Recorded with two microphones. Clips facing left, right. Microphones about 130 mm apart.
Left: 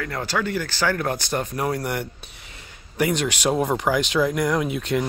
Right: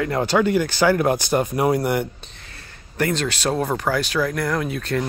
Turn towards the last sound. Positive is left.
turn(degrees=15)  # may be behind; listen again after turning